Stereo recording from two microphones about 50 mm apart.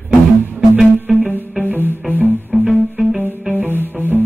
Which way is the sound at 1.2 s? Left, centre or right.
Right.